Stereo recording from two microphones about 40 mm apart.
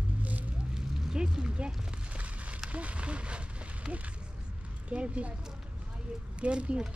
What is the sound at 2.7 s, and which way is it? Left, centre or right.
Owl, right.